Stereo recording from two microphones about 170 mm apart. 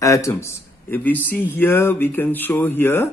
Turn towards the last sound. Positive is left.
turn(degrees=10)  # may be behind; listen again after turning